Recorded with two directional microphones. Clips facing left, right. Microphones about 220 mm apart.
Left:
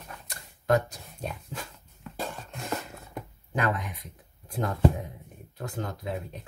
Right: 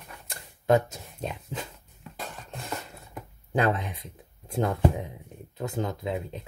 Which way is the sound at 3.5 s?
30° right (ahead or behind).